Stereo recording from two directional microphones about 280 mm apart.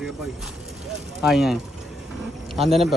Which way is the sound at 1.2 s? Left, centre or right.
Centre.